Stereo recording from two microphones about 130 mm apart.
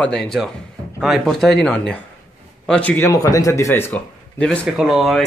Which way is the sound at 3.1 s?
25° left (ahead or behind).